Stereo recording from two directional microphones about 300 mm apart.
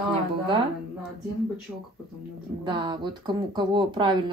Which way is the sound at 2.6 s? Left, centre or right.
Centre.